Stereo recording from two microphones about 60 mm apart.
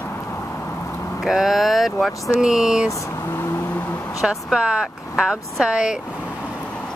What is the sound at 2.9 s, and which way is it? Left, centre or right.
Speech, left.